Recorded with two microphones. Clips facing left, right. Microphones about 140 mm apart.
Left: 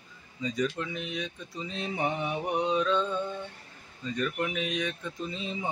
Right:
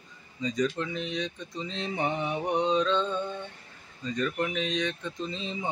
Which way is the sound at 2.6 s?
25° right (ahead or behind).